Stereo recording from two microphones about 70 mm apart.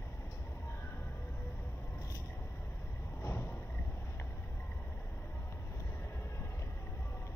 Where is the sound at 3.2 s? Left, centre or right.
Left.